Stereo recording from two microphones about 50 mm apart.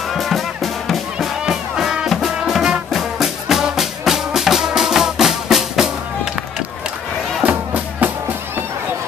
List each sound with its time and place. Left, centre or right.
0.1 s music: centre
7.4 s music: right